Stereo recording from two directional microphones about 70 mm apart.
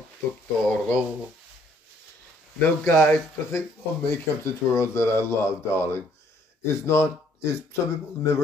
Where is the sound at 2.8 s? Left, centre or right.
Left.